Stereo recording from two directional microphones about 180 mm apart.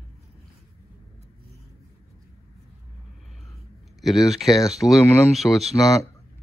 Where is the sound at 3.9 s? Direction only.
Centre (ahead or behind).